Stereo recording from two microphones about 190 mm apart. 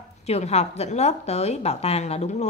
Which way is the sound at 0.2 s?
35° left (ahead or behind).